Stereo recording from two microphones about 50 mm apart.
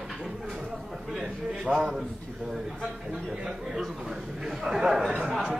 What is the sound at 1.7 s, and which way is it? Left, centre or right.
Speech, centre.